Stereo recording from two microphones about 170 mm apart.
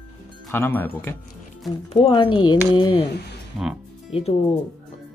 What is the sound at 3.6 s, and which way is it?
Speech, 5° right (ahead or behind).